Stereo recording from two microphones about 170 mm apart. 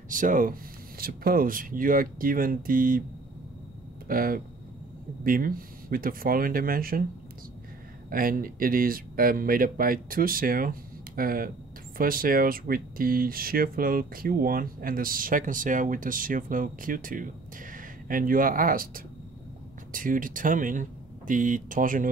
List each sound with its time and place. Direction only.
0.1 s speech: 50° right (ahead or behind)
4.1 s speech: 55° right (ahead or behind)
8.1 s speech: 55° right (ahead or behind)